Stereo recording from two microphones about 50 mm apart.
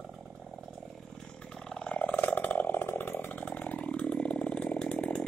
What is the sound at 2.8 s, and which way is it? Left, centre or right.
Chainsaw, left.